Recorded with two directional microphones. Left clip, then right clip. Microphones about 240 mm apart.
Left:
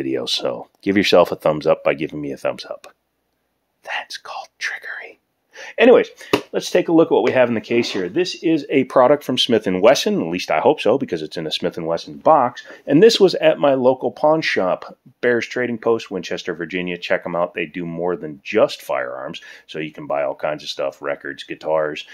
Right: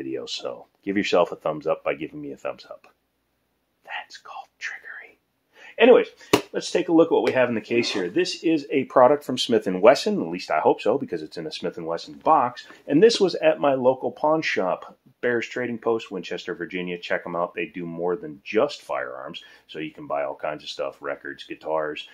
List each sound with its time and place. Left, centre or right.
0.0 s speech: left
3.8 s speech: left
5.6 s a sound: left
6.5 s speech: left